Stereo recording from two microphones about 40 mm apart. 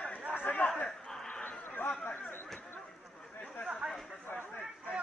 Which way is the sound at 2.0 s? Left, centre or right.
Left.